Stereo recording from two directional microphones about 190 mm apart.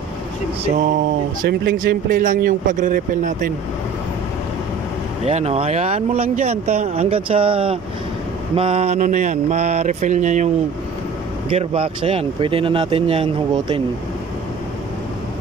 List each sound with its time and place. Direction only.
1.4 s speech: 55° right (ahead or behind)
5.2 s speech: 35° right (ahead or behind)
11.5 s speech: 30° right (ahead or behind)